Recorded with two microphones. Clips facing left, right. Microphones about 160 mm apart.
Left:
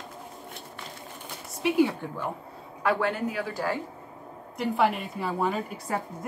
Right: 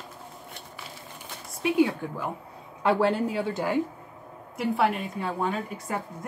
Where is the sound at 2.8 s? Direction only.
30° right (ahead or behind).